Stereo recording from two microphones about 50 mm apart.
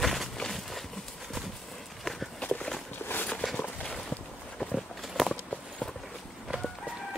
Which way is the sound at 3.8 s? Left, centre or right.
Centre.